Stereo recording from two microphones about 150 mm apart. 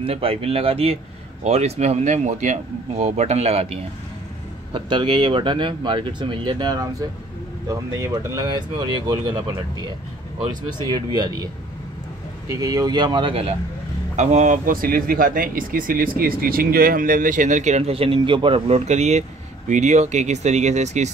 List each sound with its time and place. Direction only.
0.0 s speech: 40° right (ahead or behind)
4.7 s speech: 30° right (ahead or behind)
10.7 s speech: 30° right (ahead or behind)
12.4 s speech: 25° right (ahead or behind)
14.1 s speech: 50° right (ahead or behind)